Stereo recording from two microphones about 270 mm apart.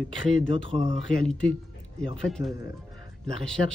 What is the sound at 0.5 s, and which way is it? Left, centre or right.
Speech, right.